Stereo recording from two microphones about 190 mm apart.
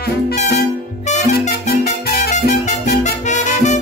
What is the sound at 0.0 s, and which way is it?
Music, 55° left (ahead or behind).